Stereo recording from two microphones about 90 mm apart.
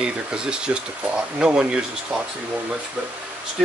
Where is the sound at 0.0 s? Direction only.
10° right (ahead or behind).